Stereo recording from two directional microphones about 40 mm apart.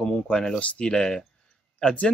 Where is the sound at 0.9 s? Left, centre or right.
Centre.